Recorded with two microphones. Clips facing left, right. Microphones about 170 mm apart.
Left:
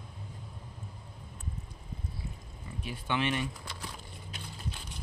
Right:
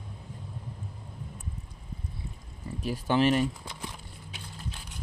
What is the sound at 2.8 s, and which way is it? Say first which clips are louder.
Speech: right 8 dB; 40° right (ahead or behind).